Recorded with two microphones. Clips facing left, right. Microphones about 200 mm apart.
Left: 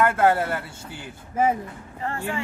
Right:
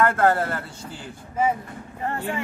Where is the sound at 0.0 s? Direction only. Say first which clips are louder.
Even; 5° left (ahead or behind).